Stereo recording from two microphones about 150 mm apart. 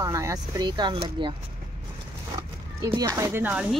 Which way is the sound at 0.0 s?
20° right (ahead or behind).